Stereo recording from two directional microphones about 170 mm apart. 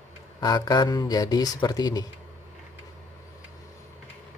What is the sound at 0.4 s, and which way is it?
A man's voice, 20° left (ahead or behind).